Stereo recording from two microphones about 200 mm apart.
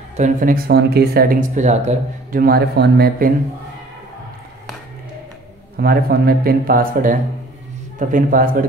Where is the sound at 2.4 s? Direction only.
50° right (ahead or behind).